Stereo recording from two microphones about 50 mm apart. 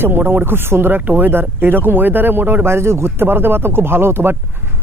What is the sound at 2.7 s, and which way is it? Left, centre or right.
Speech, right.